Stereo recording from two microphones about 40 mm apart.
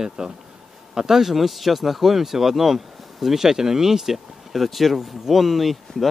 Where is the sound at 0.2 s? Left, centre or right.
Centre.